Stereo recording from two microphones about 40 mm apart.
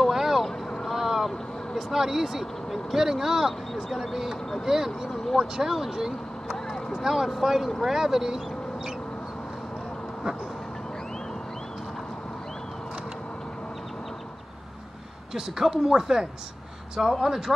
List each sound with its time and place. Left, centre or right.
0.0 s vehicle: centre
0.5 s boat: centre
0.8 s boat: centre
1.8 s speech: centre
3.0 s speech: centre
5.1 s speech: centre
5.4 s speech: centre
15.6 s speech: centre